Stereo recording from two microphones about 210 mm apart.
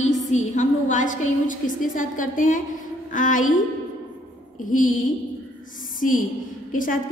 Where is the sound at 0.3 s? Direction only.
35° left (ahead or behind).